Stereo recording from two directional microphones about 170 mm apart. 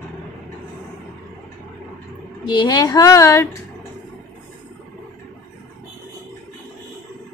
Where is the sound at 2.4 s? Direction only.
25° left (ahead or behind).